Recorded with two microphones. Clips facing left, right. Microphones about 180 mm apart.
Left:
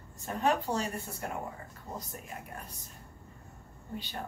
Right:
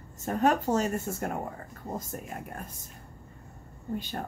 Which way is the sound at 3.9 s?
50° right (ahead or behind).